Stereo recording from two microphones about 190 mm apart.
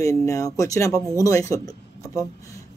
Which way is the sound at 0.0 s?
15° left (ahead or behind).